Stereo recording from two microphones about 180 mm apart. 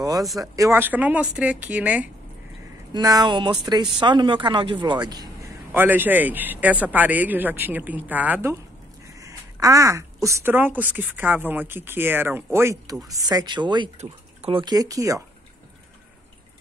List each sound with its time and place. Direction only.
0.4 s speech: 15° right (ahead or behind)
2.9 s speech: 20° right (ahead or behind)
5.7 s speech: 10° right (ahead or behind)